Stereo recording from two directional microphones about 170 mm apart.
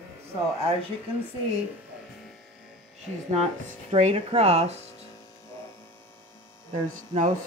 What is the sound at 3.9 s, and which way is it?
Speech, 40° right (ahead or behind).